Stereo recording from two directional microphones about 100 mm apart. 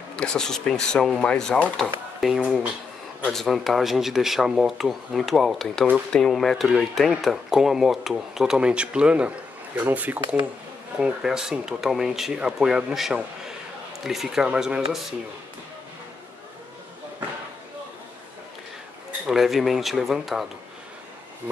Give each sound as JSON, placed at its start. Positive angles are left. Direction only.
{"t": 0.1, "sound": "speech", "side_deg": 10}
{"t": 19.2, "sound": "speech", "side_deg": 0}